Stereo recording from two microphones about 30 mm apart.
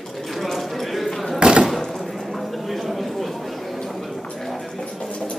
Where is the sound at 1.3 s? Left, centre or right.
Right.